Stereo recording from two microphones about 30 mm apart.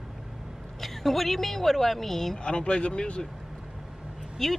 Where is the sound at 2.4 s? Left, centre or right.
Left.